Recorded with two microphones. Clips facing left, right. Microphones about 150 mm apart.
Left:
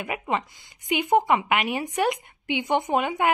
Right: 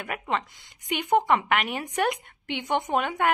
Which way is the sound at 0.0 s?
10° left (ahead or behind).